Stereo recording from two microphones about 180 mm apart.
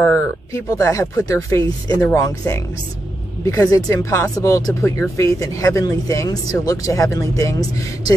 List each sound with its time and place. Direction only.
0.0 s speech: 15° left (ahead or behind)